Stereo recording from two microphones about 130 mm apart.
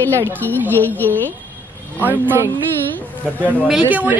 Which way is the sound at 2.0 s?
15° right (ahead or behind).